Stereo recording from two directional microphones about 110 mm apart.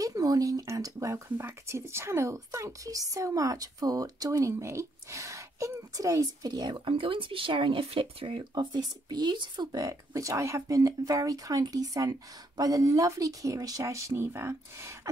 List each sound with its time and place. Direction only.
0.0 s speech: 30° right (ahead or behind)